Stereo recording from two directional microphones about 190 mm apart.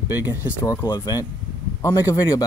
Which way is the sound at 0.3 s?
10° right (ahead or behind).